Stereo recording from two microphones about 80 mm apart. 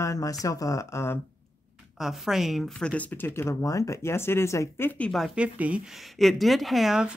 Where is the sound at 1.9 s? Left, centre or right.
Centre.